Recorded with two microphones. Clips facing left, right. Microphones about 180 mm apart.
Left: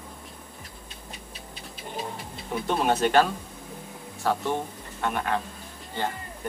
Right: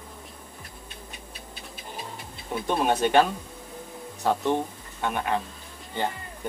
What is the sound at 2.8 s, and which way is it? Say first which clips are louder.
Speech: even; 5° left (ahead or behind).